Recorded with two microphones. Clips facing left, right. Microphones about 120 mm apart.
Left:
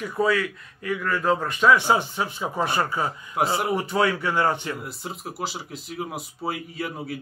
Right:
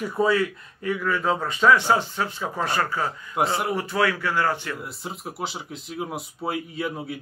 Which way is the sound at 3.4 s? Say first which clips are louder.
Even; 5° left (ahead or behind).